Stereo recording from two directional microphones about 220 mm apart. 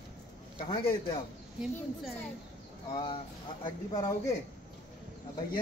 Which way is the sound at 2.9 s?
20° left (ahead or behind).